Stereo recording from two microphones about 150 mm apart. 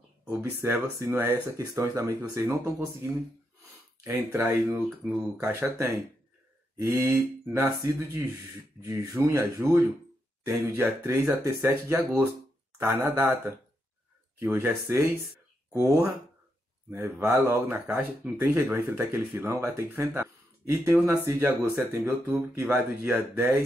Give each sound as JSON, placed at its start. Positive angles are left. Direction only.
{"t": 0.3, "sound": "speech", "side_deg": -15}
{"t": 4.0, "sound": "speech", "side_deg": -20}